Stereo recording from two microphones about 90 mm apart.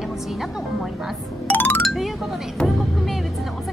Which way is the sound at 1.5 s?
20° left (ahead or behind).